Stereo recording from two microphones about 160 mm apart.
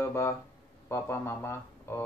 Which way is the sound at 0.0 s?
15° left (ahead or behind).